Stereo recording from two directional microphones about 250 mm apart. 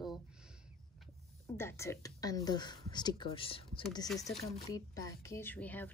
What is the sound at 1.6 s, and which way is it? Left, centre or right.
Speech, centre.